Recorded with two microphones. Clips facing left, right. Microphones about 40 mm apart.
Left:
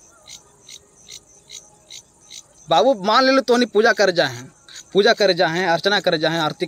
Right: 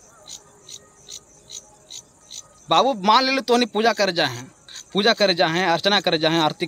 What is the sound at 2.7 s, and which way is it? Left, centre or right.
Speech, right.